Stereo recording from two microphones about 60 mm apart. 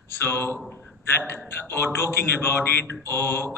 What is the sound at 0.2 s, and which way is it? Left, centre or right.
A man's voice, left.